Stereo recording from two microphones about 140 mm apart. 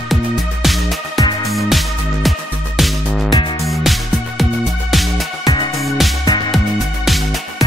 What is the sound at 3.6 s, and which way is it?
Music, centre (ahead or behind).